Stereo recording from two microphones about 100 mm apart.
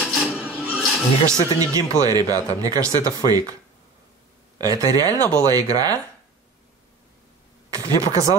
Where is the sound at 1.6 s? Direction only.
35° right (ahead or behind).